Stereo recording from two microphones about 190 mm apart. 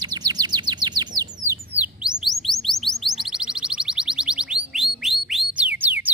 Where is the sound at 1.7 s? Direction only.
5° right (ahead or behind).